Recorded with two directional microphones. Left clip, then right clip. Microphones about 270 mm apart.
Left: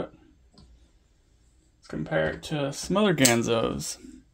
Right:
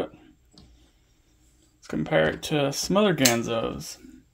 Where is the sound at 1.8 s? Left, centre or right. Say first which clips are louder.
Right 4 dB; right.